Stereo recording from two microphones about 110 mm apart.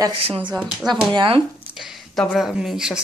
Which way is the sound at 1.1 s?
55° right (ahead or behind).